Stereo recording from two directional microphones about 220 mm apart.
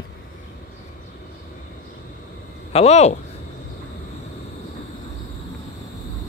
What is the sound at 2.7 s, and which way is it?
Speech, 30° left (ahead or behind).